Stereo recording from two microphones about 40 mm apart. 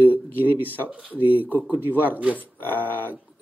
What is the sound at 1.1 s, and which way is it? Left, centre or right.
Speech, right.